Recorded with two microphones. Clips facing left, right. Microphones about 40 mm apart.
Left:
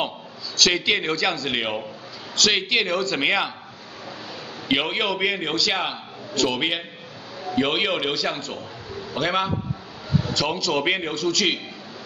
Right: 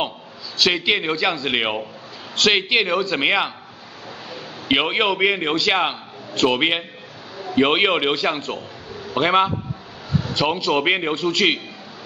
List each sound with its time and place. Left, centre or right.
0.6 s a man's voice: centre
4.6 s a man's voice: right